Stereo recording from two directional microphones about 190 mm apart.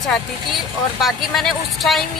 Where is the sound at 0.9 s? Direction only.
Centre (ahead or behind).